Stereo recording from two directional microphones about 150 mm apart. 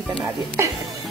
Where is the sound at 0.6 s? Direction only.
15° right (ahead or behind).